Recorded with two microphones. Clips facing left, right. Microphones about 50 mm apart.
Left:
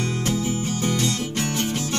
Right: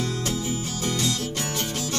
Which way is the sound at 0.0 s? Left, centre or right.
Left.